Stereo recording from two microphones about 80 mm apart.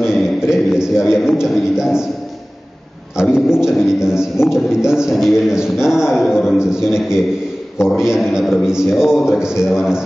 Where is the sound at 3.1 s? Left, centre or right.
Centre.